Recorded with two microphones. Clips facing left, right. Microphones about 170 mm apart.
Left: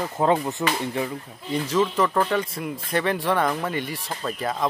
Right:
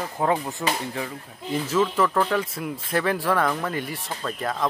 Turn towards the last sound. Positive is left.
turn(degrees=5)  # may be behind; listen again after turning